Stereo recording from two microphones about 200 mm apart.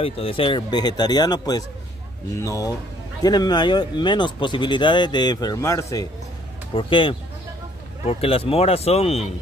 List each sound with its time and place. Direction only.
0.0 s speech: 25° left (ahead or behind)
6.7 s speech: 25° left (ahead or behind)